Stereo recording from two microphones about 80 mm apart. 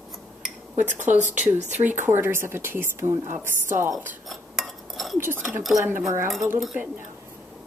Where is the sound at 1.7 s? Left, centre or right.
Right.